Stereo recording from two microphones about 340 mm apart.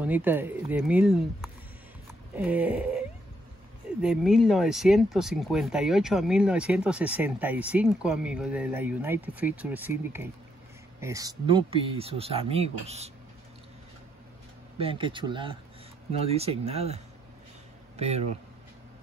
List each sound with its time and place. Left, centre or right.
0.0 s speech: centre
14.8 s speech: centre